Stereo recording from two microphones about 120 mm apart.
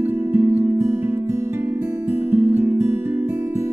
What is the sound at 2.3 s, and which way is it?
Music, 15° right (ahead or behind).